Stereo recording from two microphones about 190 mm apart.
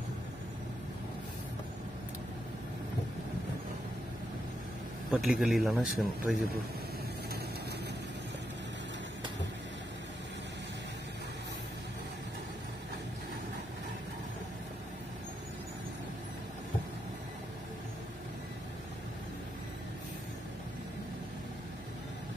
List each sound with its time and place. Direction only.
5.1 s speech: 5° right (ahead or behind)